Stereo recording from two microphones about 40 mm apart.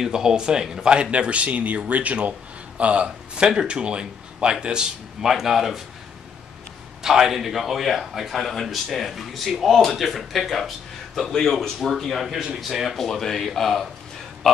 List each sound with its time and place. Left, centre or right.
0.0 s speech: centre
1.1 s speech: right
5.2 s speech: centre
7.0 s a man's voice: centre
11.8 s a man's voice: centre